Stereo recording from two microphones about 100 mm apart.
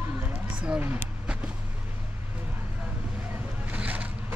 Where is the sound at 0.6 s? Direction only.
15° right (ahead or behind).